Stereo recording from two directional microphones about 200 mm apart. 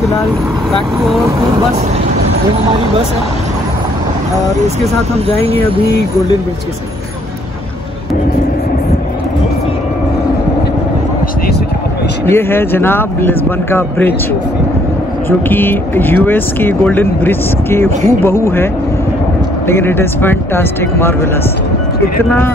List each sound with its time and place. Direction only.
5.3 s speech: 30° right (ahead or behind)
12.3 s speech: 10° left (ahead or behind)
15.2 s speech: 10° left (ahead or behind)